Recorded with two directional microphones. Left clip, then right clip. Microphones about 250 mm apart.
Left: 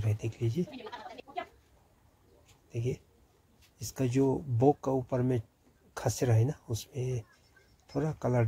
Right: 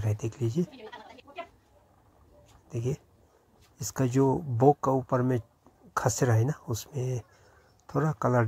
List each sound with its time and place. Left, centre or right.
0.0 s speech: centre
2.7 s speech: centre